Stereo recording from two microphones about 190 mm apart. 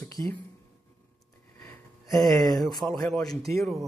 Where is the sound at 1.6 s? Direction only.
15° left (ahead or behind).